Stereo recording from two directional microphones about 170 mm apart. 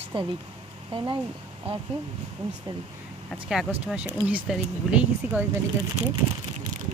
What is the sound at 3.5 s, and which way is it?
Speech, 5° right (ahead or behind).